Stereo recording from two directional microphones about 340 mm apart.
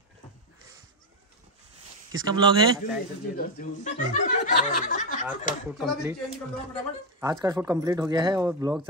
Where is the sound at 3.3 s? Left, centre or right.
Left.